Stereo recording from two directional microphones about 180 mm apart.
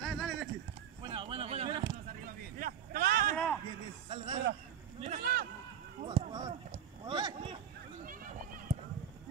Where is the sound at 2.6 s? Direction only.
55° right (ahead or behind).